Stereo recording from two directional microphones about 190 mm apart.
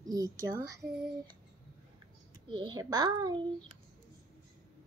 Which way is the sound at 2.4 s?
25° right (ahead or behind).